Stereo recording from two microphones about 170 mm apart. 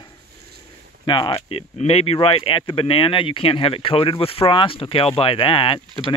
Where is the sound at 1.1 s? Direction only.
30° left (ahead or behind).